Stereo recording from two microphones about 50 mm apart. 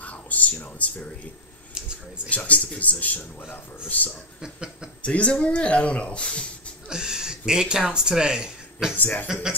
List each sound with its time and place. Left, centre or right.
0.0 s a sound: left
2.2 s a man's voice: left
6.9 s speech: centre
8.9 s a man's voice: left